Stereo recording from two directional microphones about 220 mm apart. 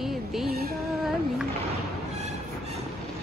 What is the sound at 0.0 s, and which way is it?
Music, centre (ahead or behind).